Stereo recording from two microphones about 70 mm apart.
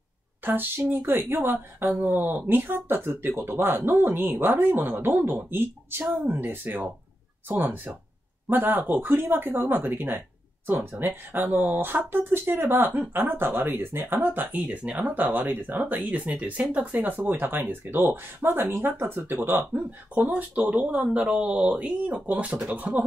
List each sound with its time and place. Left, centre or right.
0.4 s speech: right